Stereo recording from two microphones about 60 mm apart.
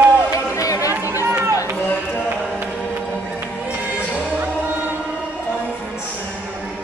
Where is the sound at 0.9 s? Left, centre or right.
Right.